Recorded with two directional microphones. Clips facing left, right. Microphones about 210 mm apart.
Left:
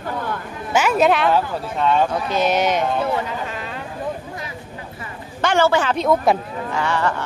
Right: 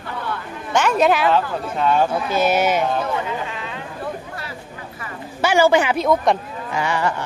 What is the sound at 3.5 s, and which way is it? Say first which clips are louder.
Chatter: left 1 dB; 45° left (ahead or behind).